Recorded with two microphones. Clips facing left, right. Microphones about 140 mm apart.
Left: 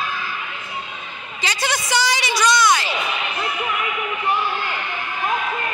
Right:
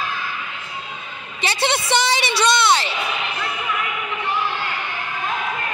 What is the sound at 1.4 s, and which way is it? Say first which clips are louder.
A woman's voice: right 3 dB; 25° right (ahead or behind).